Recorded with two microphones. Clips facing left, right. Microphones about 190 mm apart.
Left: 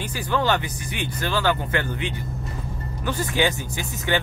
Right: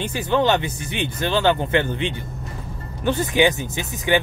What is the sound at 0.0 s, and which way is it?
Speech, 20° right (ahead or behind).